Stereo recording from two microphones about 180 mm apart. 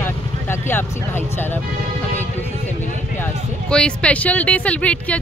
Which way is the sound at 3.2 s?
5° left (ahead or behind).